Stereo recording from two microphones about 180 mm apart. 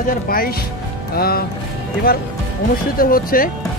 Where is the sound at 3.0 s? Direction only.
50° left (ahead or behind).